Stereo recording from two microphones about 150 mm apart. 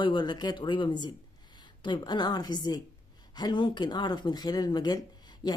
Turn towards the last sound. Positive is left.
turn(degrees=30)  # may be behind; listen again after turning